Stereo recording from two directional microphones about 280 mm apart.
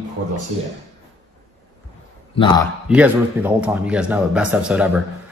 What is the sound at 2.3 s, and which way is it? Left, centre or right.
Speech, centre.